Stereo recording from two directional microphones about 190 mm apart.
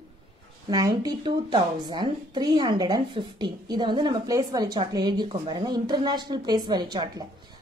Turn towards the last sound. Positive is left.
turn(degrees=-20)  # may be behind; listen again after turning